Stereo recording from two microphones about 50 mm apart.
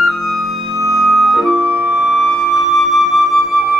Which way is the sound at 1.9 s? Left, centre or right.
Centre.